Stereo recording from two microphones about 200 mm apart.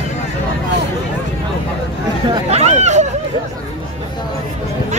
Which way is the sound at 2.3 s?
35° right (ahead or behind).